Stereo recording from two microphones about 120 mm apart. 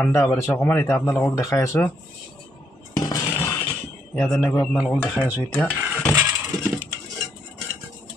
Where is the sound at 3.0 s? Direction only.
25° left (ahead or behind).